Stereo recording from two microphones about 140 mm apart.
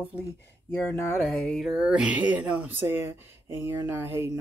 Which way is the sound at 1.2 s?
5° left (ahead or behind).